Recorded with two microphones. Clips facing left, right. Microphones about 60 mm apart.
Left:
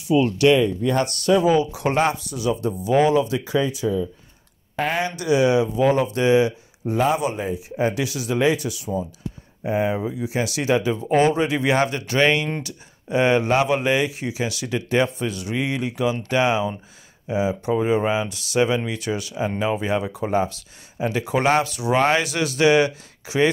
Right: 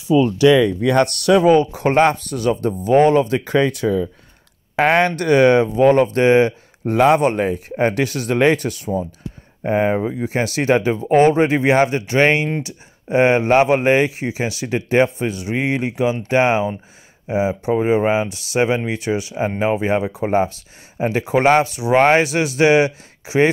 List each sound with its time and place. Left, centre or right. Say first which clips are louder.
0.7 s speech: right 5 dB; right
1.7 s speech: right 6 dB; right
3.5 s speech: right 5 dB; right
6.9 s speech: right 7 dB; right
7.2 s speech: right 7 dB; right